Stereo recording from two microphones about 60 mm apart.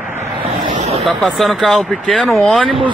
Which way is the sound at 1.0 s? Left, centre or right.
Centre.